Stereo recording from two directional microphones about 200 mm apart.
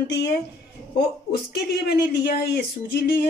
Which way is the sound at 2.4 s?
55° left (ahead or behind).